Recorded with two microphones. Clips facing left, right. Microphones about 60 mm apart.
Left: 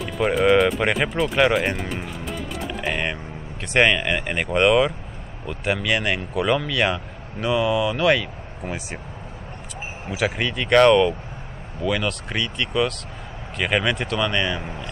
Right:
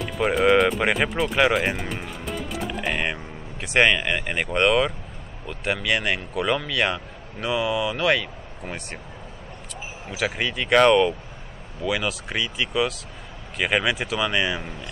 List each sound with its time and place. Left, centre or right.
0.0 s music: centre
3.6 s speech: centre
10.0 s speech: centre
14.6 s speech: left